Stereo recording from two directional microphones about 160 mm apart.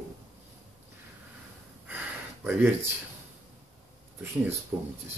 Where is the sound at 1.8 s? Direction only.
10° right (ahead or behind).